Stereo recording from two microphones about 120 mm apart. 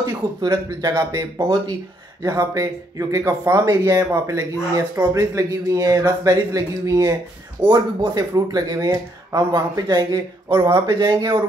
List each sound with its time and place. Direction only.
0.0 s speech: 30° right (ahead or behind)